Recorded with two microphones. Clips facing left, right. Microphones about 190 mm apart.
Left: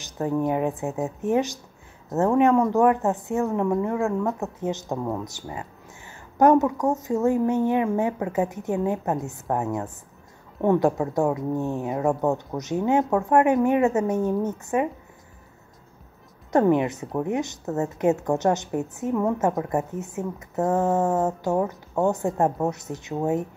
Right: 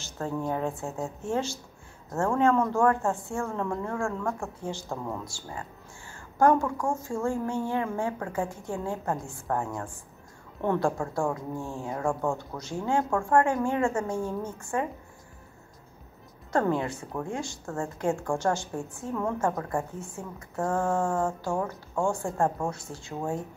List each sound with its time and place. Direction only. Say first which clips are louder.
0.0 s speech: left 7 dB; 15° left (ahead or behind)
16.5 s speech: left 7 dB; 20° left (ahead or behind)